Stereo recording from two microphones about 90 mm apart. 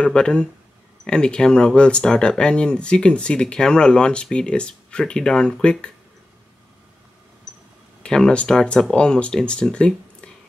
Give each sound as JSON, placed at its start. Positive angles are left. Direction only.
{"t": 0.0, "sound": "speech", "side_deg": 10}
{"t": 8.0, "sound": "speech", "side_deg": 10}